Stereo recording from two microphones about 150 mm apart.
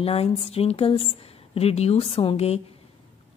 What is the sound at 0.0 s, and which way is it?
A woman's voice, 40° left (ahead or behind).